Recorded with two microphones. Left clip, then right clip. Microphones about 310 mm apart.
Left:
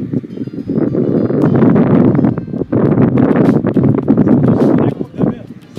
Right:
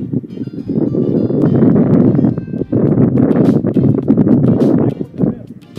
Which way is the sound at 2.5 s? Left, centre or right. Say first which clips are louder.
Left 2 dB; centre.